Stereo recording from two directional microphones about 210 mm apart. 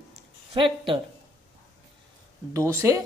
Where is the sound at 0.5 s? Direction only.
25° right (ahead or behind).